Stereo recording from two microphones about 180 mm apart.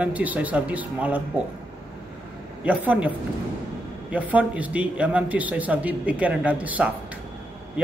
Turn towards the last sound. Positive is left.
turn(degrees=-10)  # may be behind; listen again after turning